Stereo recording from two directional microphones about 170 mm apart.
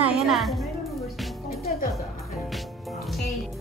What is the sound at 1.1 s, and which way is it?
Music, centre (ahead or behind).